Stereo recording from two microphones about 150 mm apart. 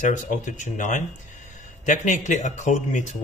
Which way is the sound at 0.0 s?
55° left (ahead or behind).